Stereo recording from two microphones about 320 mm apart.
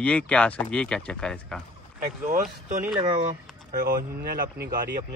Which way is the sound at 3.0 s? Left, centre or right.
Right.